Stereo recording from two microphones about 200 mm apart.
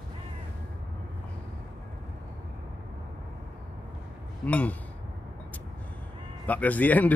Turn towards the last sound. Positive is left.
turn(degrees=10)  # may be behind; listen again after turning